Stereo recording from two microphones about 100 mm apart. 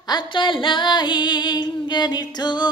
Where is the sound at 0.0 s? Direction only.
50° left (ahead or behind).